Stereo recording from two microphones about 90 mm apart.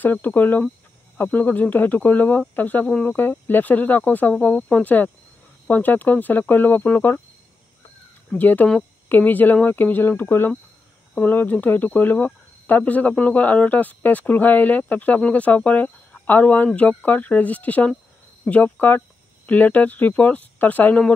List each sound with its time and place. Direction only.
0.0 s speech: 20° left (ahead or behind)
8.3 s speech: 20° left (ahead or behind)